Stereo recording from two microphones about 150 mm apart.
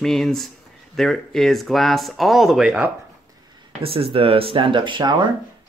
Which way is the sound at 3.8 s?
40° right (ahead or behind).